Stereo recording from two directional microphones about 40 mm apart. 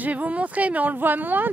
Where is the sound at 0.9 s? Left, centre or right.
Right.